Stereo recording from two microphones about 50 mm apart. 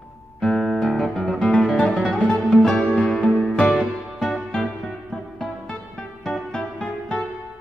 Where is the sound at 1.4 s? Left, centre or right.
Centre.